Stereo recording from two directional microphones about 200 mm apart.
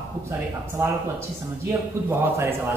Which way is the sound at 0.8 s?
15° right (ahead or behind).